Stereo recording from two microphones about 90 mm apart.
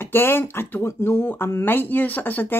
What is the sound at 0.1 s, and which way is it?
Speech, 25° left (ahead or behind).